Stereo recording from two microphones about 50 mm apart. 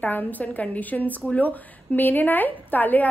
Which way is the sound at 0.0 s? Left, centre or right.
Left.